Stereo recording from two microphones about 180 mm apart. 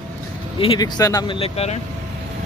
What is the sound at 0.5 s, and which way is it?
Speech, 25° left (ahead or behind).